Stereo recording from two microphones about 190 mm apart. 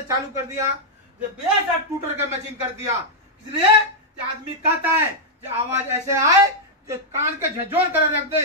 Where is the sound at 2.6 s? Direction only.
15° right (ahead or behind).